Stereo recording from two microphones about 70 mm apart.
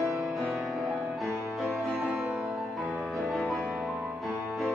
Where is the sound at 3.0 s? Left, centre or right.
Centre.